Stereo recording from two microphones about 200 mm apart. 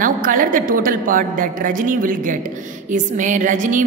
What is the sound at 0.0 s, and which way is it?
A woman's voice, 40° right (ahead or behind).